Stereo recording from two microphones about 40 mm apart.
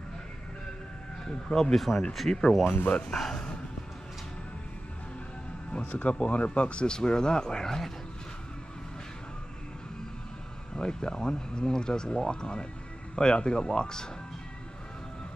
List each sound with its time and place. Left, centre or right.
1.6 s speech: centre
2.6 s speech: left
3.1 s speech: centre
5.7 s speech: left; by 7.9 s centre
10.7 s speech: centre